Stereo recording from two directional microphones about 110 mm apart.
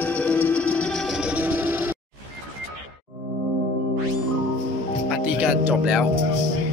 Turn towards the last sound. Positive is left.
turn(degrees=-10)  # may be behind; listen again after turning